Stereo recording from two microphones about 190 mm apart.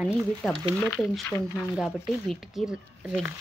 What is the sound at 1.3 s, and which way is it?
Speech, 15° left (ahead or behind).